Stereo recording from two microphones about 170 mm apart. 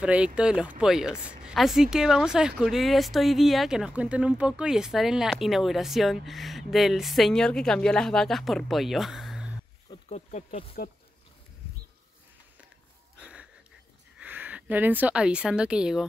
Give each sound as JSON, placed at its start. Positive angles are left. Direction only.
{"t": 0.0, "sound": "speech", "side_deg": -5}
{"t": 10.0, "sound": "speech", "side_deg": 40}
{"t": 13.2, "sound": "wheeze", "side_deg": -5}
{"t": 14.2, "sound": "a woman's voice", "side_deg": -10}